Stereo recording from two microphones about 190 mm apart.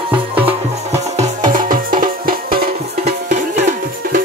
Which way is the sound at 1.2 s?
45° right (ahead or behind).